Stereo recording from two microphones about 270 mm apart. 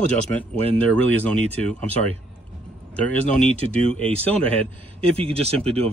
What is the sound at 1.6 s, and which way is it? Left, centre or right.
Speech, centre.